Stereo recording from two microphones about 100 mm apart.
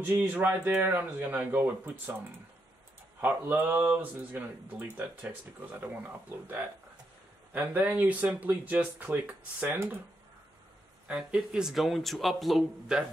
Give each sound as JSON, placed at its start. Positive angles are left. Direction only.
{"t": 0.3, "sound": "speech", "side_deg": -20}
{"t": 3.2, "sound": "speech", "side_deg": -20}
{"t": 7.5, "sound": "speech", "side_deg": -15}
{"t": 11.1, "sound": "speech", "side_deg": -10}